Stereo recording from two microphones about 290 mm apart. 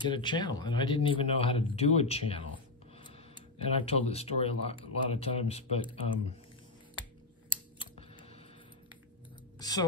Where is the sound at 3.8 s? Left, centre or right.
Left.